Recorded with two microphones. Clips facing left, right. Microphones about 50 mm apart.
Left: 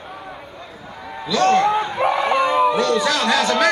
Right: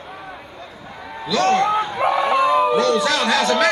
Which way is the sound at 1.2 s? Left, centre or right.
Centre.